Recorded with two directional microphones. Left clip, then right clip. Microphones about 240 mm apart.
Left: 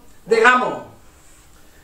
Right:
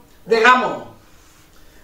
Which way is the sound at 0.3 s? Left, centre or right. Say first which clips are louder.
Right 1 dB; centre.